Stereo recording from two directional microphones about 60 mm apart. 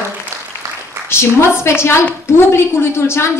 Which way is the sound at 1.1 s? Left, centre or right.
Left.